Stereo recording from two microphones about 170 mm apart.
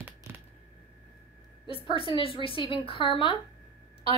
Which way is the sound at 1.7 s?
30° left (ahead or behind).